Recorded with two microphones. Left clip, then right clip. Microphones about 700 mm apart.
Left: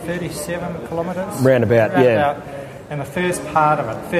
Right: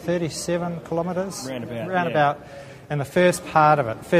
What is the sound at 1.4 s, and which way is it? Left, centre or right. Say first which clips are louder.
Speech: left 18 dB; left.